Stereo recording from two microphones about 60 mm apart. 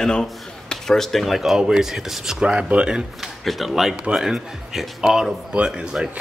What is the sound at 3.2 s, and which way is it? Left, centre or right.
Speech, centre.